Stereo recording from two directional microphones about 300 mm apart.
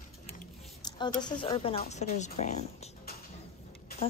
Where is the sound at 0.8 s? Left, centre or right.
Centre.